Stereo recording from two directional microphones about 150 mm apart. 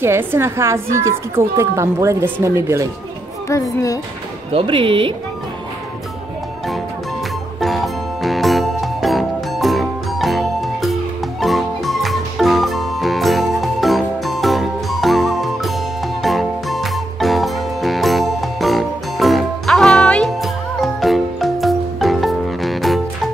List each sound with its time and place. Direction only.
0.0 s speech: 15° right (ahead or behind)
4.5 s speech: 35° right (ahead or behind)
7.6 s music: centre (ahead or behind)